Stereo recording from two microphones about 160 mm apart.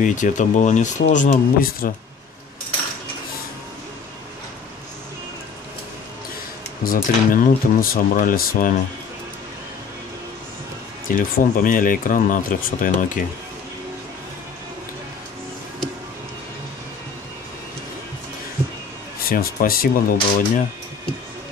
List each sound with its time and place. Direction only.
0.0 s speech: 50° left (ahead or behind)
6.8 s speech: 60° left (ahead or behind)
11.1 s speech: 55° left (ahead or behind)
19.2 s speech: 65° left (ahead or behind)